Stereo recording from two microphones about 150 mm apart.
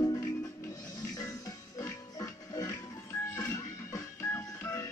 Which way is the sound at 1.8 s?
25° left (ahead or behind).